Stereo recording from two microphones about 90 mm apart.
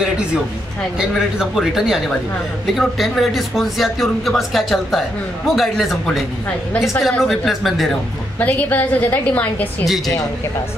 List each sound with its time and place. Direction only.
0.9 s a man's voice: 5° right (ahead or behind)
8.4 s a woman's voice: 20° left (ahead or behind)
9.8 s a man's voice: centre (ahead or behind)